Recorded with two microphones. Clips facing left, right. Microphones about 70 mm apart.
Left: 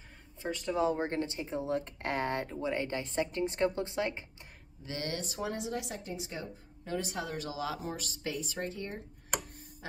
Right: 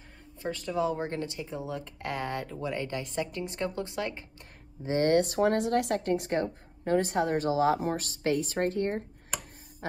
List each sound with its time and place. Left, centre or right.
0.7 s a woman's voice: left
4.8 s speech: right